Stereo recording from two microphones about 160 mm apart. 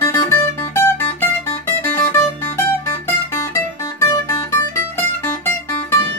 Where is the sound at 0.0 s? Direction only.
15° left (ahead or behind).